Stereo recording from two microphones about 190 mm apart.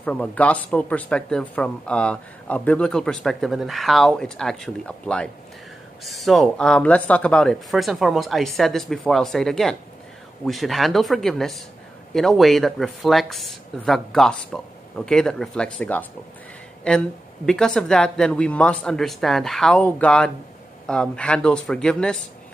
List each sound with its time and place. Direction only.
0.0 s speech: 5° left (ahead or behind)